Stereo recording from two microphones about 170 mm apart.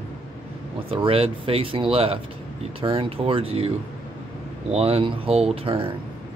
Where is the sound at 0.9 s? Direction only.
35° right (ahead or behind).